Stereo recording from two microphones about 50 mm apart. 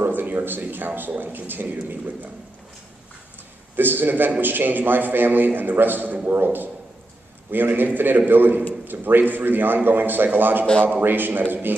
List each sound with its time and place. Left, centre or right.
0.0 s speech: right
3.7 s a man's voice: right